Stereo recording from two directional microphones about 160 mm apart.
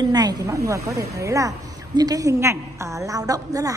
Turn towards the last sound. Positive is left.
turn(degrees=-20)  # may be behind; listen again after turning